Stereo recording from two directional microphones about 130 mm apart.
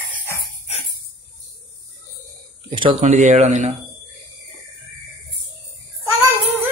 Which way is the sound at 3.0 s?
65° right (ahead or behind).